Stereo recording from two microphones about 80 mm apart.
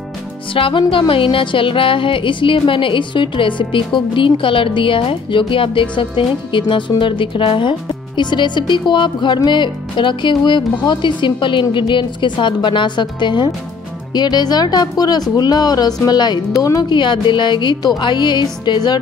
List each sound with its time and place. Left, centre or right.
0.7 s speech: left
8.2 s speech: left
14.1 s speech: left
16.5 s speech: left
16.9 s speech: left